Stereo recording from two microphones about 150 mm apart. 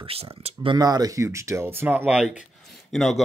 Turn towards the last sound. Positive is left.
turn(degrees=0)  # may be behind; listen again after turning